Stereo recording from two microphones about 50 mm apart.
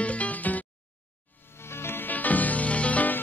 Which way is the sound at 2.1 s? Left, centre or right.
Left.